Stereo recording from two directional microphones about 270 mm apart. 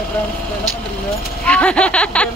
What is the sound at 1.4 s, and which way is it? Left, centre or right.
Speech, centre.